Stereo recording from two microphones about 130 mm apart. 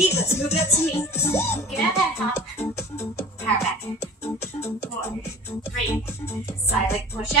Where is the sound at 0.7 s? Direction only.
20° left (ahead or behind).